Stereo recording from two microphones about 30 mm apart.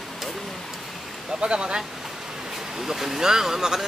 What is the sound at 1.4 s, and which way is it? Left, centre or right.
Speech, right.